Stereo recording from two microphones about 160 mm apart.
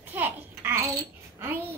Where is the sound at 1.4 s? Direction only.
15° right (ahead or behind).